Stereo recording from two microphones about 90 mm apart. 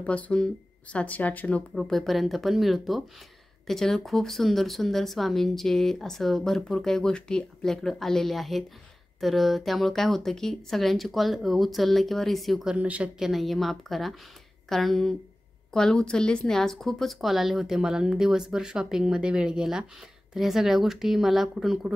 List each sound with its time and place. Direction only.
0.0 s speech: 15° left (ahead or behind)
1.8 s speech: centre (ahead or behind)
12.7 s a woman's voice: 15° right (ahead or behind)
13.2 s a woman's voice: centre (ahead or behind)